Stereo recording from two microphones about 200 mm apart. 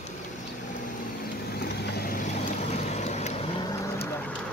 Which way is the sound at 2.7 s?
35° left (ahead or behind).